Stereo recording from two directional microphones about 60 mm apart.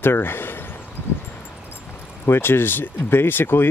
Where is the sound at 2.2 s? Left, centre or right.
Left.